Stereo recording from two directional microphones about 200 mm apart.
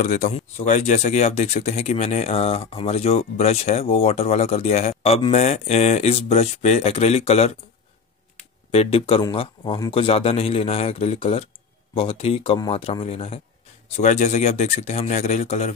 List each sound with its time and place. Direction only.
0.0 s speech: 40° left (ahead or behind)
8.7 s a man's voice: 30° left (ahead or behind)